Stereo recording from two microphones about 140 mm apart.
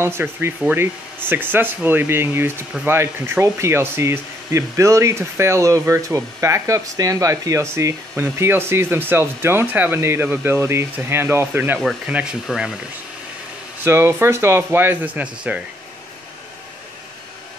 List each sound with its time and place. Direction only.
0.0 s speech: 15° right (ahead or behind)
13.8 s speech: 20° right (ahead or behind)